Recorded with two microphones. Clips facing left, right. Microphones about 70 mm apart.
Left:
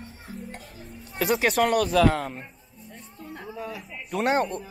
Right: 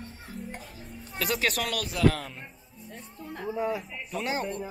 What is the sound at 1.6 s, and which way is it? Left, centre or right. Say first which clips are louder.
Speech: left 8 dB; left.